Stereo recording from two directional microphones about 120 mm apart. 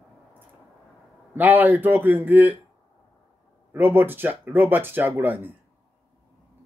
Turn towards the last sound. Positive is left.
turn(degrees=-15)  # may be behind; listen again after turning